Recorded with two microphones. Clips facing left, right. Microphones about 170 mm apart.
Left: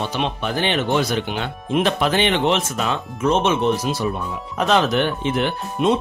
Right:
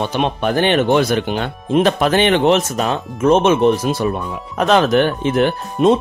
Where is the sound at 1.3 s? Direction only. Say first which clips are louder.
Right 5 dB; 40° right (ahead or behind).